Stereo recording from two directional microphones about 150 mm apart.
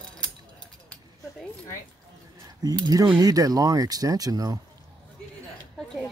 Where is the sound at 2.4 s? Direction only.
25° right (ahead or behind).